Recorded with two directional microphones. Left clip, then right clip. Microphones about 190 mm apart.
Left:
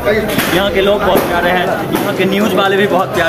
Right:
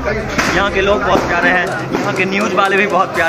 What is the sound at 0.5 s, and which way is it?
Speech, 30° left (ahead or behind).